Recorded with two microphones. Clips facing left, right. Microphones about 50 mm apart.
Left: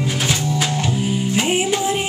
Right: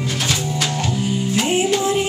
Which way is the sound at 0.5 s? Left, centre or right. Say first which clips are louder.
Left 1 dB; centre.